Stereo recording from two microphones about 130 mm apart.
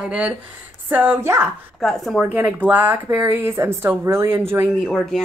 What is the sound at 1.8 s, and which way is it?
Speech, centre (ahead or behind).